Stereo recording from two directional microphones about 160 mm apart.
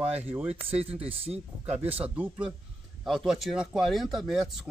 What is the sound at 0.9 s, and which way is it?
Speech, 40° right (ahead or behind).